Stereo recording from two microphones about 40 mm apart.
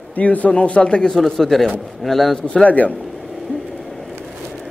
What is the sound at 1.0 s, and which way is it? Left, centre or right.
A man's voice, centre.